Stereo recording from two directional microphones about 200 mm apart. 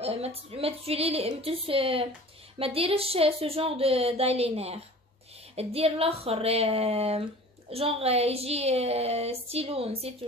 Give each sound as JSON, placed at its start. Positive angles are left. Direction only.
{"t": 0.0, "sound": "speech", "side_deg": -30}